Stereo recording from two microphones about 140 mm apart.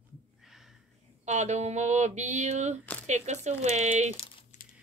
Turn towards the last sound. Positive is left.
turn(degrees=-55)  # may be behind; listen again after turning